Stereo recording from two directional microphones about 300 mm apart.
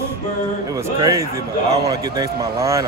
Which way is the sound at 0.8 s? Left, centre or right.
Centre.